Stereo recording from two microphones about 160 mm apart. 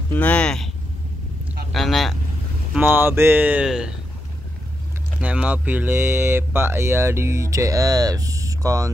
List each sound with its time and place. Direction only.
0.1 s speech: 10° left (ahead or behind)
1.7 s a sound: centre (ahead or behind)
2.7 s speech: 10° right (ahead or behind)
5.2 s speech: 10° right (ahead or behind)